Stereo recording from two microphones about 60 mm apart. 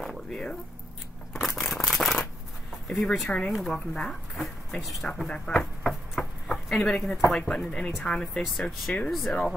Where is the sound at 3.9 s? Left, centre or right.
Centre.